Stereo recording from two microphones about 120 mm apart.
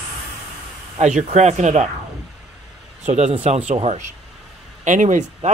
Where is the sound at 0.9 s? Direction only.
75° right (ahead or behind).